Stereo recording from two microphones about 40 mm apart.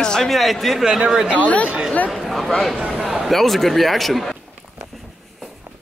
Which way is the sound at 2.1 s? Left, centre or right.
Centre.